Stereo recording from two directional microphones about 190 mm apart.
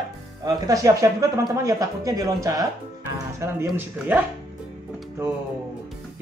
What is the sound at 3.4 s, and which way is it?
Speech, 15° right (ahead or behind).